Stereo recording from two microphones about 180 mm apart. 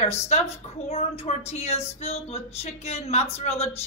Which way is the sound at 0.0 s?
35° left (ahead or behind).